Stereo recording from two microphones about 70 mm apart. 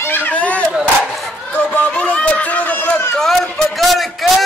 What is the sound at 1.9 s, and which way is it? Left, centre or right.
Speech, centre.